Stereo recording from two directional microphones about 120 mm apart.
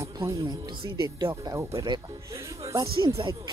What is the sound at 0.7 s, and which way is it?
Speech, 40° right (ahead or behind).